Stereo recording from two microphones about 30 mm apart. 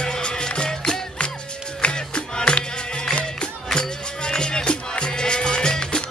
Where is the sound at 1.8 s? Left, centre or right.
Left.